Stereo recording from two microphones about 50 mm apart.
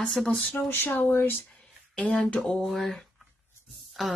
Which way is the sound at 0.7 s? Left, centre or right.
Left.